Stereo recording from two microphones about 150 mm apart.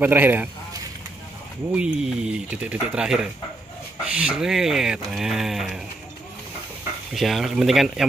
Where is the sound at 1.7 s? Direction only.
5° right (ahead or behind).